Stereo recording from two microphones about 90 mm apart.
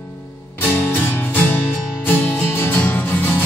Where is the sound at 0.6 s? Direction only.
25° left (ahead or behind).